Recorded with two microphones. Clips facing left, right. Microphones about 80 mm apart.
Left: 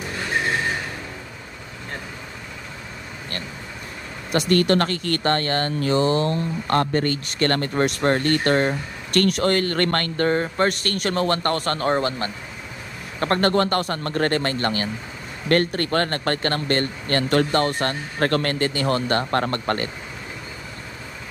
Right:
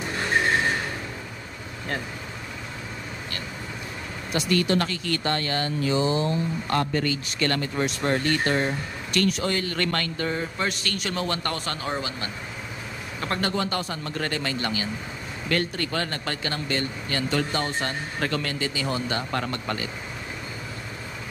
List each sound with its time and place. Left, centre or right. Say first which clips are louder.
4.3 s speech: left 5 dB; left